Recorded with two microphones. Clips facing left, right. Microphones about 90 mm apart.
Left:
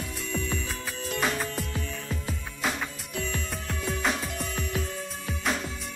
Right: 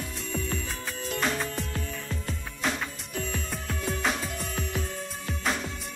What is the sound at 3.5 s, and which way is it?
Music, centre (ahead or behind).